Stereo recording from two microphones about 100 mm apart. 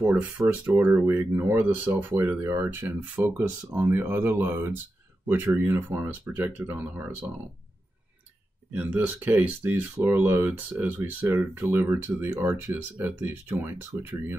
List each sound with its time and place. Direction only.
0.0 s speech: 10° right (ahead or behind)
8.7 s speech: 15° right (ahead or behind)